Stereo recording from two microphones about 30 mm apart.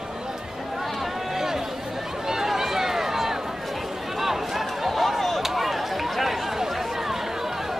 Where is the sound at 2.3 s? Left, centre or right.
Centre.